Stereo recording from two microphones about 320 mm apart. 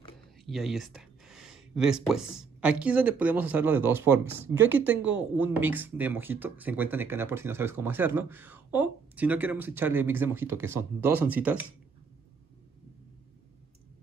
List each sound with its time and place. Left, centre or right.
0.5 s speech: centre